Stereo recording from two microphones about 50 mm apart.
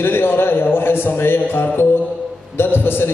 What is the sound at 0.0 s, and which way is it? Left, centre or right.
A man's voice, left.